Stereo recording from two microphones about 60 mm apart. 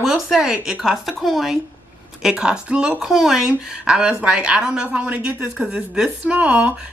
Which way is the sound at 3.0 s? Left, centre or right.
Centre.